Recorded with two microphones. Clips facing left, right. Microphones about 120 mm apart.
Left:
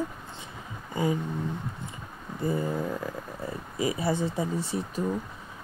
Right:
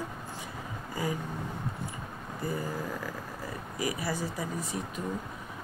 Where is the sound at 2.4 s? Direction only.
25° left (ahead or behind).